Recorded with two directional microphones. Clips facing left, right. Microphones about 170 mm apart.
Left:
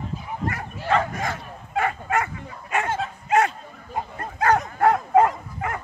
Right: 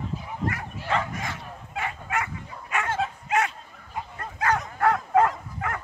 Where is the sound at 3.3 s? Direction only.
35° left (ahead or behind).